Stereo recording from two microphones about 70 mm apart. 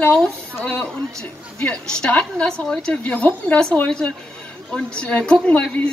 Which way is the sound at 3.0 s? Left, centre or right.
Left.